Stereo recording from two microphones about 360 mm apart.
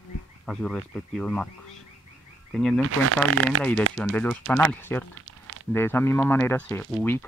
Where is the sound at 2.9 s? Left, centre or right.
Right.